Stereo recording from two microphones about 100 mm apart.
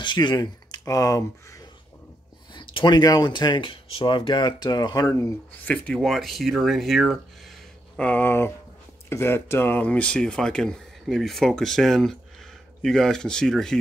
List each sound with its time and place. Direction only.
0.0 s speech: 50° left (ahead or behind)
2.5 s speech: 50° left (ahead or behind)
5.6 s speech: 15° left (ahead or behind)
5.9 s speech: centre (ahead or behind)
8.0 s speech: 15° left (ahead or behind)